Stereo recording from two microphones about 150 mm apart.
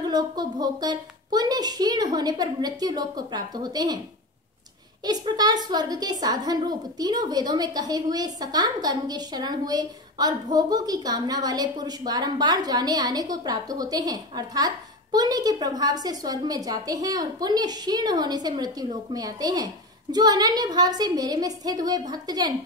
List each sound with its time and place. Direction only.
0.0 s a woman's voice: 25° right (ahead or behind)
5.0 s a woman's voice: 25° right (ahead or behind)